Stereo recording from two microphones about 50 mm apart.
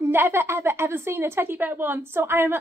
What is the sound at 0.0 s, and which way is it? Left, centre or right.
A woman's voice, right.